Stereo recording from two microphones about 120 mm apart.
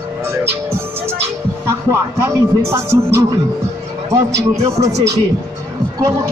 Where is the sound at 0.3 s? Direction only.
20° right (ahead or behind).